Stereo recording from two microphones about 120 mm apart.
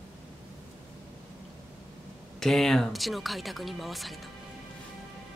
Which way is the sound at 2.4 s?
5° left (ahead or behind).